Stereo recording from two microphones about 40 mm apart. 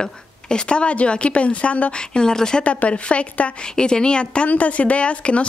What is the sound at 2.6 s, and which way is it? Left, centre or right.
A woman's voice, left.